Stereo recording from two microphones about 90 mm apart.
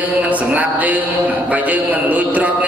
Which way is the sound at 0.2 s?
15° right (ahead or behind).